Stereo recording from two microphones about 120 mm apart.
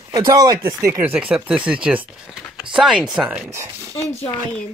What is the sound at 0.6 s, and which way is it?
Speech, 20° right (ahead or behind).